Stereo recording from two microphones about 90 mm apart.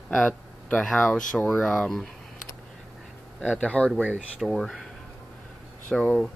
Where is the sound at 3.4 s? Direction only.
15° left (ahead or behind).